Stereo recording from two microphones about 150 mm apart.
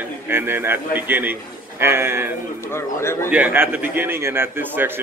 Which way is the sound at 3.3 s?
10° right (ahead or behind).